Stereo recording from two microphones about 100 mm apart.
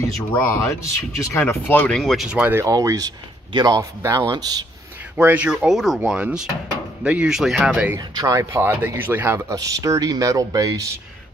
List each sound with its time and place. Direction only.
0.3 s speech: 30° left (ahead or behind)
1.9 s speech: 5° left (ahead or behind)
2.2 s speech: 15° right (ahead or behind)
2.6 s speech: 35° right (ahead or behind)
4.0 s speech: 30° right (ahead or behind)
5.1 s speech: 15° right (ahead or behind)
8.1 s speech: 35° right (ahead or behind)
9.5 s speech: 35° right (ahead or behind)